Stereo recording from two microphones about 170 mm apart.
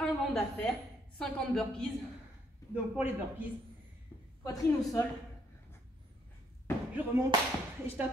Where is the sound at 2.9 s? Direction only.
10° right (ahead or behind).